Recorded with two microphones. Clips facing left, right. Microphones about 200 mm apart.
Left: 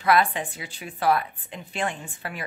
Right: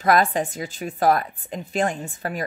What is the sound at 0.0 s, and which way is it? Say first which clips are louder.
A woman's voice: right 3 dB; 40° right (ahead or behind).